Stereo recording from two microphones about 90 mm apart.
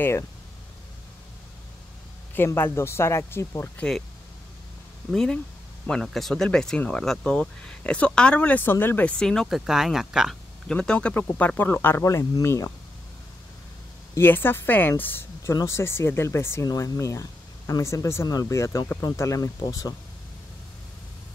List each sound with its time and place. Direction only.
2.3 s speech: 25° left (ahead or behind)
3.7 s speech: 10° left (ahead or behind)
5.1 s speech: 5° left (ahead or behind)
9.2 s speech: 5° left (ahead or behind)
10.7 s speech: 10° left (ahead or behind)
12.0 s speech: 35° left (ahead or behind)
14.1 s speech: 25° left (ahead or behind); by 20.0 s 40° left (ahead or behind)